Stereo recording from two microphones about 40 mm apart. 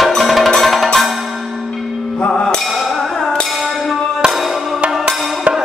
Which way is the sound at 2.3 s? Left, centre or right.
Left.